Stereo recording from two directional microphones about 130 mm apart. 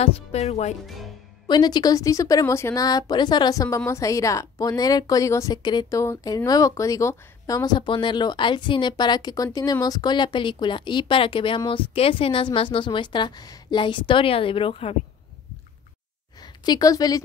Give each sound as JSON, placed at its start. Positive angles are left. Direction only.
{"t": 0.0, "sound": "speech", "side_deg": 55}
{"t": 0.8, "sound": "speech", "side_deg": 0}
{"t": 1.5, "sound": "a woman's voice", "side_deg": 35}
{"t": 16.6, "sound": "a woman's voice", "side_deg": 30}